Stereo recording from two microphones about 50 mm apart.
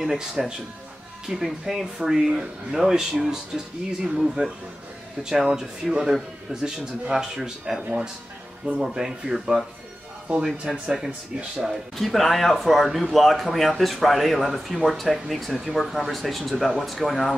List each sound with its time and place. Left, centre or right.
0.0 s speech: centre
10.7 s speech: centre
12.0 s speech: centre